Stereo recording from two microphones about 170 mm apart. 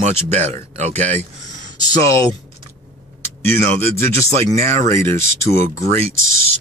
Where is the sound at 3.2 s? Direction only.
15° left (ahead or behind).